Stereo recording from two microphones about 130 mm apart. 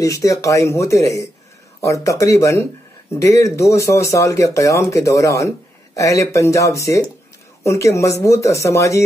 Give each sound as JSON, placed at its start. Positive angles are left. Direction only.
{"t": 0.0, "sound": "speech", "side_deg": 25}